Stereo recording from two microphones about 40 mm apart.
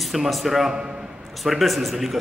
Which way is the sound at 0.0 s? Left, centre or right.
Centre.